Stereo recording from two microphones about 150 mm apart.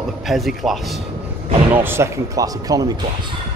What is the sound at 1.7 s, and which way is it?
Speech, 15° right (ahead or behind).